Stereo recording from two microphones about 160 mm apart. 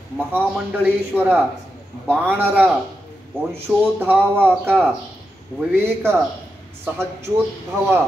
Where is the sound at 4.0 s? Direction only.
10° right (ahead or behind).